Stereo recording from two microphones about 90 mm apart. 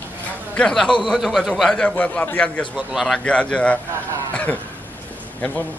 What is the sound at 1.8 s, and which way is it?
A man's voice, 15° left (ahead or behind).